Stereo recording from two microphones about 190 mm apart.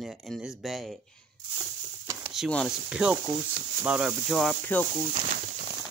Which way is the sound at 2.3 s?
Centre (ahead or behind).